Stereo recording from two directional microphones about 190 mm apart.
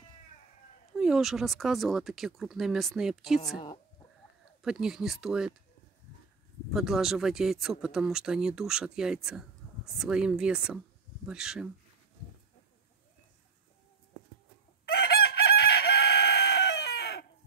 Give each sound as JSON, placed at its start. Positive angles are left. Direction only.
{"t": 0.9, "sound": "speech", "side_deg": -5}
{"t": 4.6, "sound": "speech", "side_deg": -5}
{"t": 6.7, "sound": "speech", "side_deg": 0}
{"t": 14.9, "sound": "chicken", "side_deg": 55}